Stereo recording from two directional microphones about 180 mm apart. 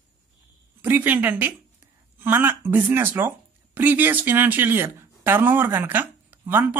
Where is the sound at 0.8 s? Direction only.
10° right (ahead or behind).